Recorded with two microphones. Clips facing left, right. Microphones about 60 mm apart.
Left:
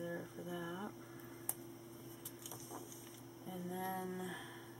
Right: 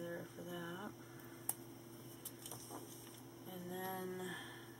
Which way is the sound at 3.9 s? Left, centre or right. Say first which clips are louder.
Left 2 dB; left.